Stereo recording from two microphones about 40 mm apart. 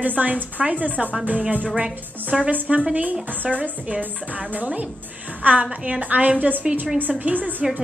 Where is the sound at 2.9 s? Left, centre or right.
Right.